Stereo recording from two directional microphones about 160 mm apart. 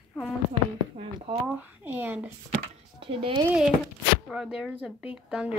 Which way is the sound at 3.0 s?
35° right (ahead or behind).